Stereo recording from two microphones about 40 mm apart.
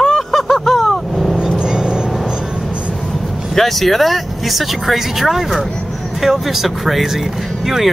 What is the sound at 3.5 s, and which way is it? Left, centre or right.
Speech, centre.